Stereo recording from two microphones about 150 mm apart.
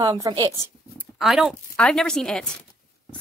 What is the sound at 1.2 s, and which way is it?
Speech, centre (ahead or behind).